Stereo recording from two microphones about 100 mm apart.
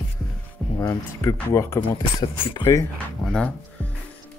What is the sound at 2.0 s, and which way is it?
Speech, 50° left (ahead or behind).